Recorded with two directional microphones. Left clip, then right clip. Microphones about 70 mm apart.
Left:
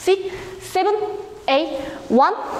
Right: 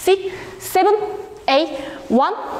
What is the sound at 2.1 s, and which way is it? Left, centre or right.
Speech, centre.